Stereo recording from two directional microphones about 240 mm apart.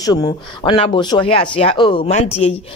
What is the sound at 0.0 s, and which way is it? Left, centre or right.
Speech, centre.